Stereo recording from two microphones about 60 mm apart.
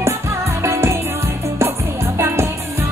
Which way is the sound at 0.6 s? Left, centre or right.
Right.